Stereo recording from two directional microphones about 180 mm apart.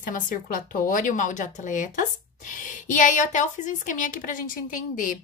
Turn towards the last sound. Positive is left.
turn(degrees=50)  # may be behind; listen again after turning